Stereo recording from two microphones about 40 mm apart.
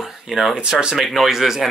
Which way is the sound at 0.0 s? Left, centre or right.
Centre.